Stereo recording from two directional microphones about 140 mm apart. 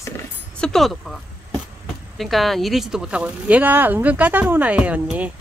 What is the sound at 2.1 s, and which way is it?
Speech, centre (ahead or behind).